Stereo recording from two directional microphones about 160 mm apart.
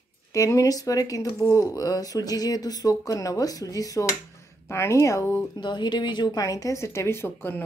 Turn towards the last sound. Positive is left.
turn(degrees=15)  # may be behind; listen again after turning